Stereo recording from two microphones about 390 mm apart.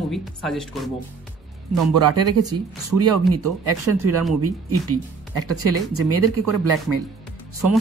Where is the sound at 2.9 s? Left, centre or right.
Right.